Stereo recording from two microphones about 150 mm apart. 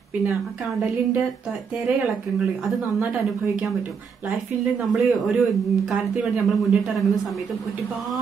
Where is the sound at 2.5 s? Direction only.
Centre (ahead or behind).